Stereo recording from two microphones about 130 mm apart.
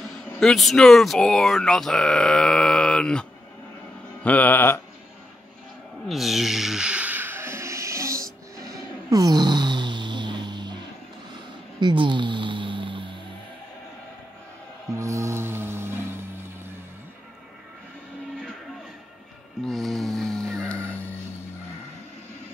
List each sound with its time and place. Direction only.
0.4 s speech: centre (ahead or behind)
4.2 s music: 10° left (ahead or behind)
6.0 s a sound: centre (ahead or behind); by 10.8 s 35° right (ahead or behind)
11.8 s a sound: 40° right (ahead or behind)
14.9 s music: 25° right (ahead or behind)
19.6 s music: centre (ahead or behind)